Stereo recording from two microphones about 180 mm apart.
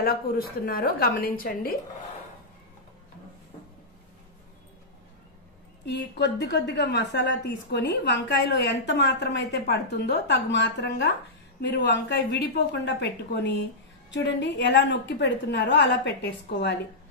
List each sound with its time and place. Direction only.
0.0 s a woman's voice: 60° left (ahead or behind)
5.9 s a woman's voice: 75° left (ahead or behind)